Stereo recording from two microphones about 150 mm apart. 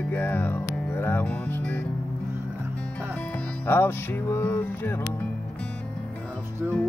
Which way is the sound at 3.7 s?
15° left (ahead or behind).